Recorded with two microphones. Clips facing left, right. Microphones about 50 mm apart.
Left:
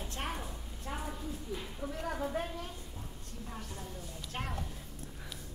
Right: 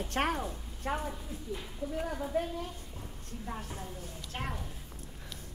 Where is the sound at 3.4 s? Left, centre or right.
Right.